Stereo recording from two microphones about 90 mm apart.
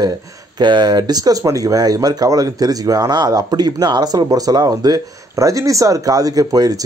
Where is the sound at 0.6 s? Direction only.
55° right (ahead or behind).